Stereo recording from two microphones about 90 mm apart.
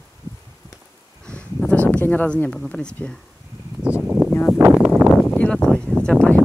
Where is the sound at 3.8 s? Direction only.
15° right (ahead or behind).